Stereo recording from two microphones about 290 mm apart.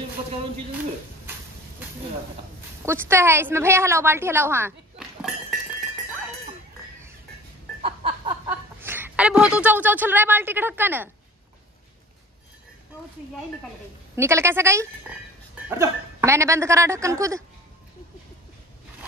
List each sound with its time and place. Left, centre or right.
2.8 s a woman's voice: centre
7.8 s a sound: centre
8.5 s speech: centre
14.1 s speech: centre